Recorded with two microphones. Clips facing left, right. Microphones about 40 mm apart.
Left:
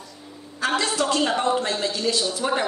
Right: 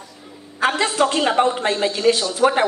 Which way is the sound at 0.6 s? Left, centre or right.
Right.